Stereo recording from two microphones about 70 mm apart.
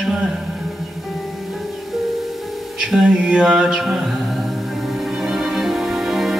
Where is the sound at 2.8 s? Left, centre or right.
Centre.